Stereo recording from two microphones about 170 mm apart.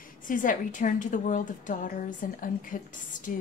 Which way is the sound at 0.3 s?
50° left (ahead or behind).